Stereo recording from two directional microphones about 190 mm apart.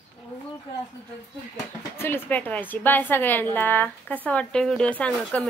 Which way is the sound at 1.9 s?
10° left (ahead or behind).